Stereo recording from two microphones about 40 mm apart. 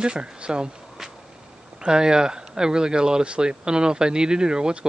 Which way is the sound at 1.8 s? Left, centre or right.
Centre.